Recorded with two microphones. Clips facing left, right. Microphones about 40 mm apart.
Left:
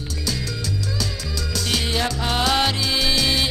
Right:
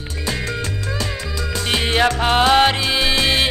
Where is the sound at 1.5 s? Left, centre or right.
Right.